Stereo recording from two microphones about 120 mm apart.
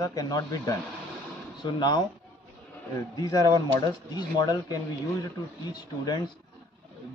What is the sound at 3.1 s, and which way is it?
Speech, 30° left (ahead or behind).